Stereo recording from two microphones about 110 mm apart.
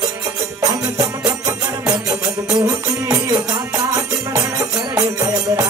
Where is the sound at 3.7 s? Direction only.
30° right (ahead or behind).